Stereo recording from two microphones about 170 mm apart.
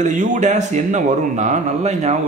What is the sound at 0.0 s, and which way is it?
Speech, 45° right (ahead or behind).